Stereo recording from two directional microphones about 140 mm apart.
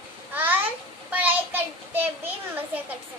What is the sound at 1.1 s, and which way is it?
Child singing, 10° right (ahead or behind).